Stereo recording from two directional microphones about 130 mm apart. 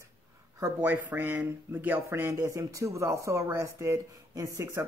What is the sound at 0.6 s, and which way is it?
Speech, 20° right (ahead or behind).